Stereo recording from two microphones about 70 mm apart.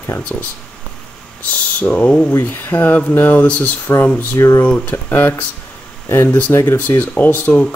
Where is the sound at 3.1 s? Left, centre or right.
Left.